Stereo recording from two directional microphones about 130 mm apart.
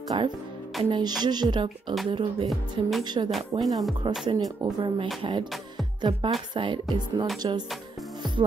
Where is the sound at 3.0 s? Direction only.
35° right (ahead or behind).